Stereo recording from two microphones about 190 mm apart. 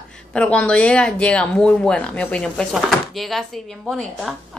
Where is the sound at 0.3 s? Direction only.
5° left (ahead or behind).